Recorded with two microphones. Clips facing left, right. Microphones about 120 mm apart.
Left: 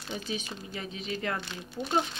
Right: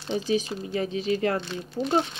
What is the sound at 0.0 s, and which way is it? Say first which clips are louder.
A woman's voice: right 10 dB; 30° right (ahead or behind).